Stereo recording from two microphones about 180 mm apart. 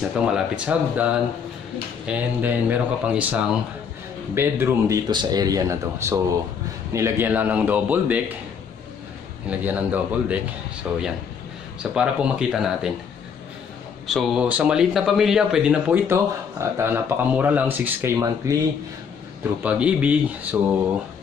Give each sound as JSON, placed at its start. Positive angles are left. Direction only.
{"t": 0.0, "sound": "speech", "side_deg": -5}
{"t": 9.5, "sound": "speech", "side_deg": -10}
{"t": 14.1, "sound": "speech", "side_deg": 0}
{"t": 19.6, "sound": "speech", "side_deg": -5}